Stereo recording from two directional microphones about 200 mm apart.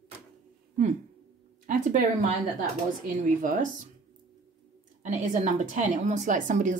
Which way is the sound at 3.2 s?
45° right (ahead or behind).